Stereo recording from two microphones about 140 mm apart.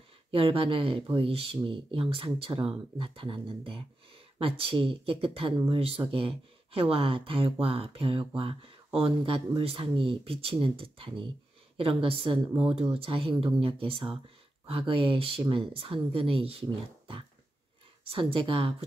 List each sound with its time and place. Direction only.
0.3 s speech: 40° right (ahead or behind)
18.1 s speech: 40° right (ahead or behind)